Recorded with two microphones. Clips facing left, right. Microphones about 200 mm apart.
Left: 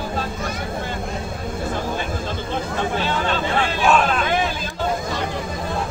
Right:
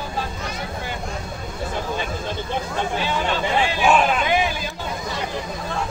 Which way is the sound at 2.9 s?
10° right (ahead or behind).